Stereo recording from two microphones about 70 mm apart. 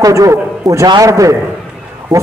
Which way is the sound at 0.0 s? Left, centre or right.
Right.